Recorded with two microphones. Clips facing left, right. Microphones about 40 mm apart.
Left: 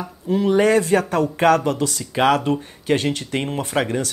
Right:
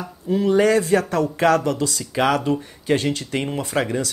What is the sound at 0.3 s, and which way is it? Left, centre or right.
Speech, left.